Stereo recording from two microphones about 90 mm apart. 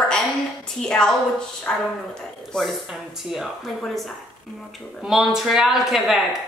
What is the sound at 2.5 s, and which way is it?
A woman's voice, centre (ahead or behind).